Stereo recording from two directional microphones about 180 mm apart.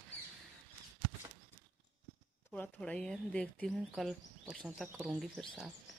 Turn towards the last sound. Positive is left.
turn(degrees=5)  # may be behind; listen again after turning